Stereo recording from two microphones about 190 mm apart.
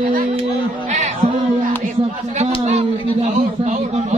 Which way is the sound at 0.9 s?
35° right (ahead or behind).